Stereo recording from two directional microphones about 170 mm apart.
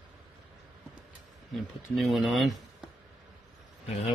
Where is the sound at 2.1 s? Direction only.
Centre (ahead or behind).